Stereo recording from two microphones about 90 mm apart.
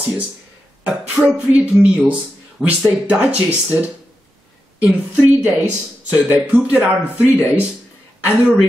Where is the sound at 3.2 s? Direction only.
20° right (ahead or behind).